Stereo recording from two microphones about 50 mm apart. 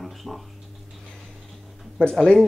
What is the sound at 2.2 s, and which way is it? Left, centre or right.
Speech, centre.